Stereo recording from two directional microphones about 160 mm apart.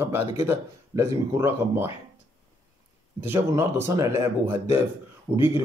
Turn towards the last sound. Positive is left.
turn(degrees=-15)  # may be behind; listen again after turning